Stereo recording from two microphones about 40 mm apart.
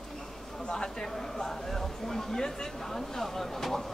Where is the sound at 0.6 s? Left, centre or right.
Centre.